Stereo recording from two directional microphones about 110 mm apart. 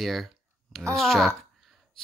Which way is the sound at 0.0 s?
Centre (ahead or behind).